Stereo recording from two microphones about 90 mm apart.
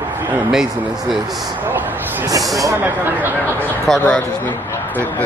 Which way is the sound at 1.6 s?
20° right (ahead or behind).